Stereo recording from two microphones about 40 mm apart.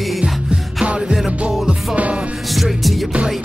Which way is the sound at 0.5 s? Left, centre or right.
Right.